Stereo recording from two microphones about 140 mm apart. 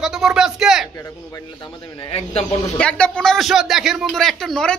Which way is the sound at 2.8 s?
5° left (ahead or behind).